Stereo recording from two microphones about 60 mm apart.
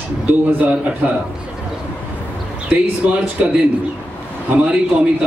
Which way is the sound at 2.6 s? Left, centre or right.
Right.